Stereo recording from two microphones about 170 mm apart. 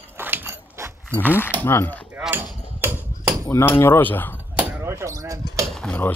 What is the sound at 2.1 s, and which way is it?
Hammer, 10° right (ahead or behind).